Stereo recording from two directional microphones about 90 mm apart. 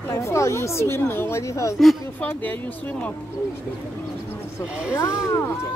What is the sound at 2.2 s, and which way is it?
Speech, 20° left (ahead or behind).